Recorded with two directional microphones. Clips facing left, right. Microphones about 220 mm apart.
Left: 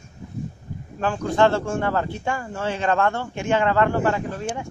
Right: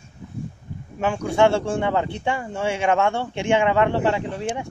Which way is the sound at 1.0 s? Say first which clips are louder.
Right 1 dB; 10° right (ahead or behind).